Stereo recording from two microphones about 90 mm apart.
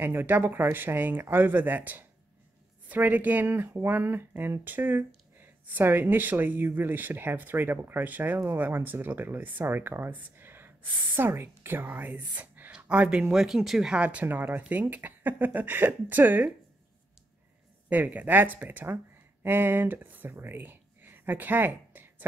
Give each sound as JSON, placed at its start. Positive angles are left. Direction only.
{"t": 0.0, "sound": "a woman's voice", "side_deg": -25}
{"t": 17.8, "sound": "speech", "side_deg": -20}